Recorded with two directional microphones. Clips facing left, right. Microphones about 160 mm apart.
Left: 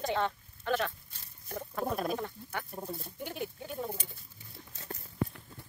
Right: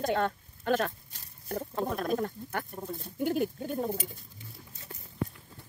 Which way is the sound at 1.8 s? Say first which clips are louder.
Left 2 dB; 5° left (ahead or behind).